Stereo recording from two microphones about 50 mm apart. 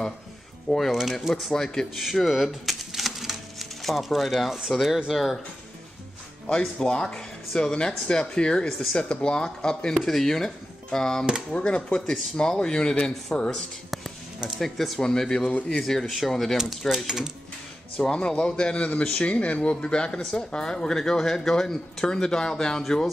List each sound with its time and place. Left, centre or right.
0.7 s speech: centre
2.0 s speech: centre
6.8 s speech: centre
10.0 s speech: centre
13.6 s a sound: centre
14.6 s speech: centre
16.5 s speech: centre
18.0 s speech: centre